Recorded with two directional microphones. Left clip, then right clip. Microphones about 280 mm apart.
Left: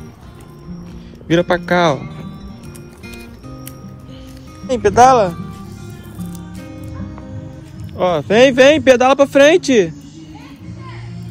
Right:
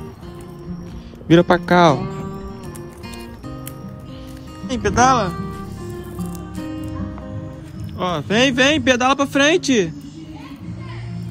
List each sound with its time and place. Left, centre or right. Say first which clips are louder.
1.2 s speech: right 1 dB; right
4.6 s speech: left 6 dB; centre
8.0 s speech: left 7 dB; centre